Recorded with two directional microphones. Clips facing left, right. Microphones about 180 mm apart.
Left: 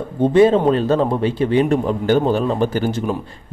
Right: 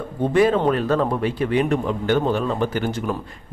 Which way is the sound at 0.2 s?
25° left (ahead or behind).